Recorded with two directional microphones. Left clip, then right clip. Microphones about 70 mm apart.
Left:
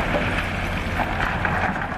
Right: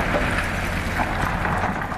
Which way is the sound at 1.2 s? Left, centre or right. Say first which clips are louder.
Left 1 dB; left.